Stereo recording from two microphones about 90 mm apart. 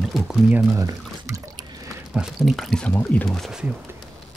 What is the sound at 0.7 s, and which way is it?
Speech, 35° right (ahead or behind).